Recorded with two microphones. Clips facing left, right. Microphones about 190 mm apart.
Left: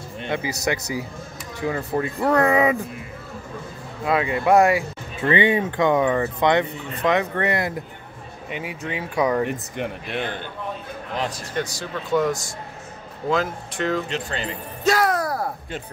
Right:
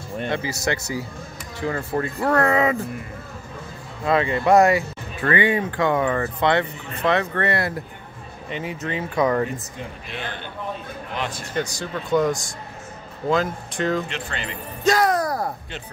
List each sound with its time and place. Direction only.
0.3 s speech: 15° left (ahead or behind)
4.0 s speech: 10° left (ahead or behind)
5.3 s speech: 20° left (ahead or behind)
9.5 s speech: 60° left (ahead or behind)
11.1 s speech: 40° left (ahead or behind)
11.5 s speech: centre (ahead or behind)
14.0 s speech: 40° left (ahead or behind)
14.9 s a sound: 5° left (ahead or behind)